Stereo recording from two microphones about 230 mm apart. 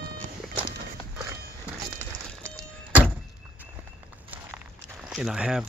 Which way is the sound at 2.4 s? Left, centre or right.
Centre.